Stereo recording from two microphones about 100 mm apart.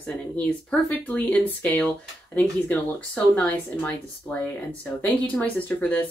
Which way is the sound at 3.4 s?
15° left (ahead or behind).